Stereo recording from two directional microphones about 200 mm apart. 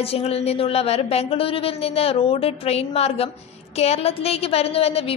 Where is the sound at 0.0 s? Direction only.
30° left (ahead or behind).